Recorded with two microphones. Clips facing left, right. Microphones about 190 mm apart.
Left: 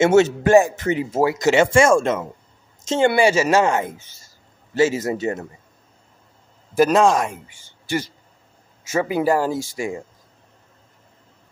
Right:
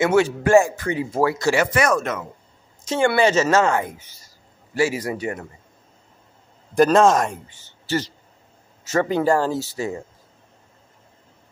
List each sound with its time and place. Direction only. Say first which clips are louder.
0.0 s speech: left 3 dB; 25° left (ahead or behind)
3.2 s speech: right 1 dB; 10° left (ahead or behind)
6.7 s a man's voice: right 1 dB; 5° left (ahead or behind)
7.4 s a sound: even; 10° left (ahead or behind)
8.8 s speech: even; 10° left (ahead or behind)